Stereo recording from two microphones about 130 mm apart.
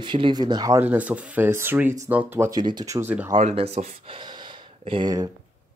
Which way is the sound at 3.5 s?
55° right (ahead or behind).